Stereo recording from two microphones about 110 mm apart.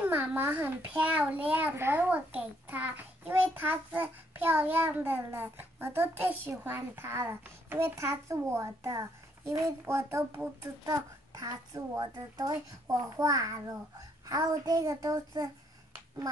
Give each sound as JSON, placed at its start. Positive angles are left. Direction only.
{"t": 0.0, "sound": "a child's voice", "side_deg": -15}
{"t": 10.9, "sound": "a child's voice", "side_deg": -30}